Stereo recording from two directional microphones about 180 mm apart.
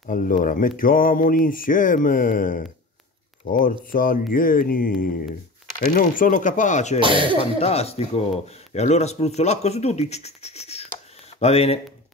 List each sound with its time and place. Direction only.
0.0 s speech: 50° left (ahead or behind)
7.0 s speech: 30° right (ahead or behind)
7.3 s speech: 35° left (ahead or behind)